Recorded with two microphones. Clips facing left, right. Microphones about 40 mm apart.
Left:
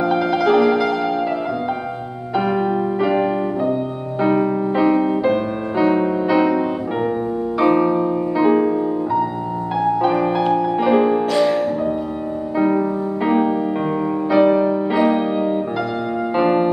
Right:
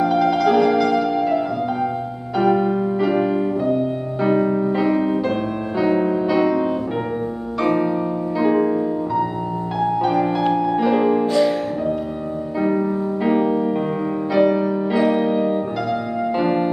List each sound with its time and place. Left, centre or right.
0.0 s music: centre
2.3 s music: centre
11.3 s music: left
12.5 s music: centre